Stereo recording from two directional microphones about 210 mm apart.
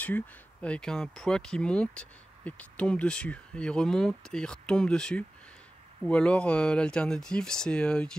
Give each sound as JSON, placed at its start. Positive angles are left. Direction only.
{"t": 0.0, "sound": "speech", "side_deg": 5}